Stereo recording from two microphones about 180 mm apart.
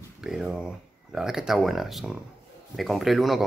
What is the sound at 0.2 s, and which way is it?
Speech, 5° right (ahead or behind).